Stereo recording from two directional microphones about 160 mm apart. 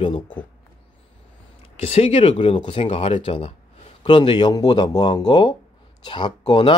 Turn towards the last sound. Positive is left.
turn(degrees=30)  # may be behind; listen again after turning